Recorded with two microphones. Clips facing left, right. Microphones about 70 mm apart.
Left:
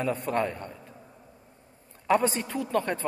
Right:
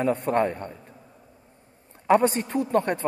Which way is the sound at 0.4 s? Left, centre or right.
Right.